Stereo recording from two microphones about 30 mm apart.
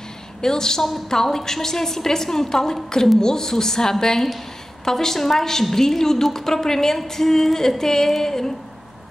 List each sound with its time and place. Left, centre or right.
0.4 s a woman's voice: centre